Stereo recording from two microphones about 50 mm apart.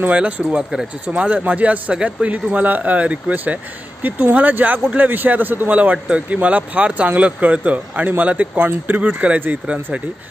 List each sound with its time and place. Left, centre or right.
0.1 s a man's voice: right
9.0 s speech: right